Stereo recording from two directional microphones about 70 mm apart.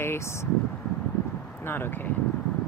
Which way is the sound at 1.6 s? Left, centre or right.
Left.